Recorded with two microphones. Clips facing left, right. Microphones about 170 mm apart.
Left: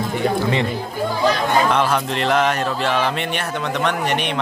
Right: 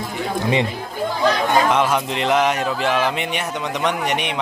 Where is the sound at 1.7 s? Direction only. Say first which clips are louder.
Even; 15° right (ahead or behind).